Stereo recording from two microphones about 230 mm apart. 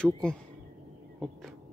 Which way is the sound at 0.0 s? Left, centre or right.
Centre.